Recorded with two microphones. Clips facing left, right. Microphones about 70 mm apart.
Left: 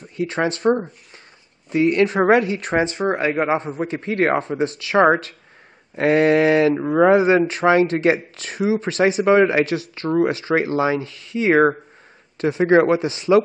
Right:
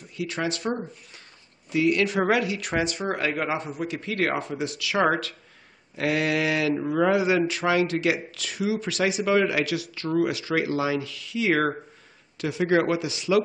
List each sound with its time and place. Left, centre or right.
0.1 s speech: left